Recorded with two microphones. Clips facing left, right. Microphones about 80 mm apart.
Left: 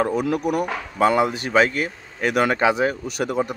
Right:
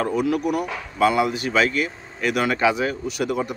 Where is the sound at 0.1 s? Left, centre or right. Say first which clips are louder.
Even; left.